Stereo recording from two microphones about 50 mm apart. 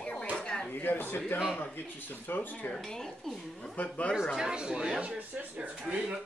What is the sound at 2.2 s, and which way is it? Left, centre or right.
Speech, left.